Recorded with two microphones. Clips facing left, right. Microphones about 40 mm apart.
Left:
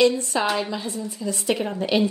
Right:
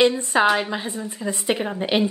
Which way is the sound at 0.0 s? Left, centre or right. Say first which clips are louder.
Right 2 dB; right.